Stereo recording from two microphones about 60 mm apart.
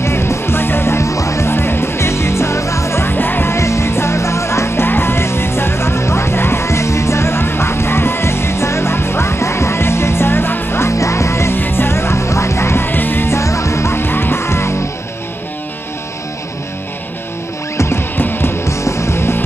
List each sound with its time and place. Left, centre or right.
0.0 s music: left
3.5 s music: left
13.4 s music: left
17.7 s music: left
18.7 s music: left